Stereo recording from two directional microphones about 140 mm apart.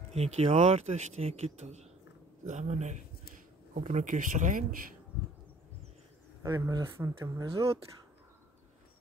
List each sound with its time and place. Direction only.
0.1 s speech: 50° right (ahead or behind); by 4.7 s 70° right (ahead or behind)
6.4 s speech: 20° right (ahead or behind)